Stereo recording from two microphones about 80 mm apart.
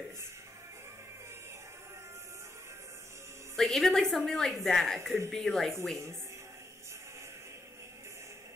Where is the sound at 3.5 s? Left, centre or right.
Centre.